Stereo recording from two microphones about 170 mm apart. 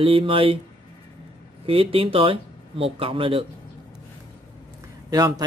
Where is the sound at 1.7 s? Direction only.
30° right (ahead or behind).